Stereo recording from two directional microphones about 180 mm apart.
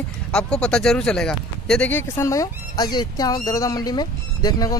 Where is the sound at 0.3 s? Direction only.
5° left (ahead or behind).